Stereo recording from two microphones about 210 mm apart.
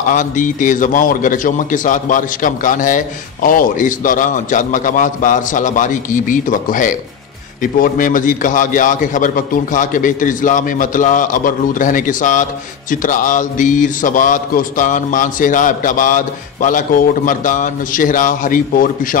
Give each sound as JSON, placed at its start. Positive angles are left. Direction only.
{"t": 0.1, "sound": "a man's voice", "side_deg": 40}